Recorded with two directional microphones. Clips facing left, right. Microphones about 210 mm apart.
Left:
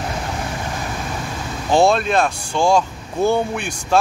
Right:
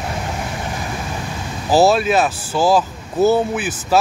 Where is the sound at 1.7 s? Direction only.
5° right (ahead or behind).